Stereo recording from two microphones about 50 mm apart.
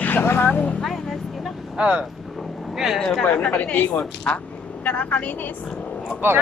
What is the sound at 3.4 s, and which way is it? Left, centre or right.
Speech, left.